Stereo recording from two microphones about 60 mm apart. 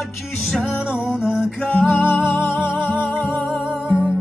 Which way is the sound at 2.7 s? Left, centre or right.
Centre.